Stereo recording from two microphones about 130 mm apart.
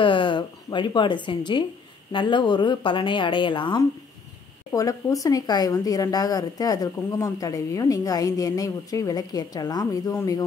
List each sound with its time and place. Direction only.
0.0 s speech: 40° left (ahead or behind)
4.7 s speech: 25° left (ahead or behind)